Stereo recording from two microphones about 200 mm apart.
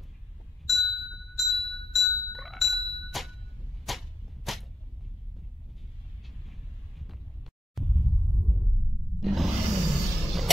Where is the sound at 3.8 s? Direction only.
Centre (ahead or behind).